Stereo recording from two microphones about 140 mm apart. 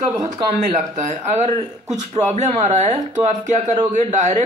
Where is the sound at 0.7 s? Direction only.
55° right (ahead or behind).